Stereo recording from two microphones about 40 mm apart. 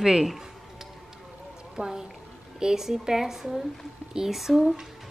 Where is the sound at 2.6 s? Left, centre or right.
Centre.